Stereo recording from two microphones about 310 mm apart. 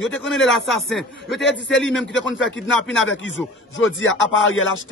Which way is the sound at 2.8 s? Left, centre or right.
Left.